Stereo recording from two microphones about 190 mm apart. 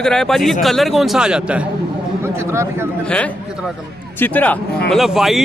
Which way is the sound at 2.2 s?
15° right (ahead or behind).